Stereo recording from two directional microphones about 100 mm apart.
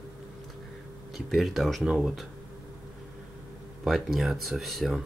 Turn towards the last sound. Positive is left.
turn(degrees=0)  # may be behind; listen again after turning